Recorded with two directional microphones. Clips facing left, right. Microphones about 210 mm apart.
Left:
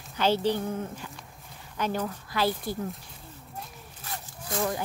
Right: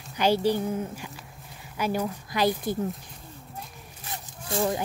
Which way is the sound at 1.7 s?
10° right (ahead or behind).